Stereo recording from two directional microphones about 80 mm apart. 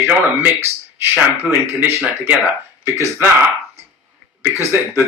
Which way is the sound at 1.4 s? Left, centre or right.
Right.